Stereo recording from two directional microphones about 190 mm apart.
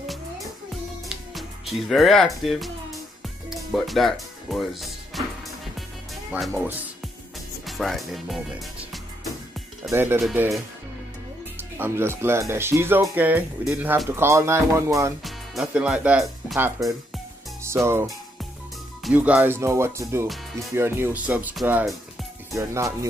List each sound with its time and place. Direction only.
1.0 s music: centre (ahead or behind)
3.4 s speech: centre (ahead or behind)
6.3 s speech: 10° right (ahead or behind)
7.6 s music: centre (ahead or behind)
9.8 s speech: 10° right (ahead or behind)
15.2 s speech: 5° right (ahead or behind)
17.8 s speech: 15° right (ahead or behind)
22.6 s speech: 15° right (ahead or behind)